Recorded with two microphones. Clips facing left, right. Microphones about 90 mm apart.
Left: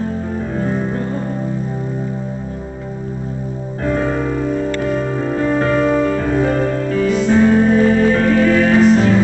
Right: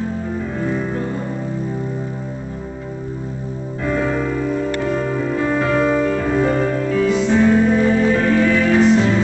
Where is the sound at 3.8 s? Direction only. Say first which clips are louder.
Left 2 dB; 40° left (ahead or behind).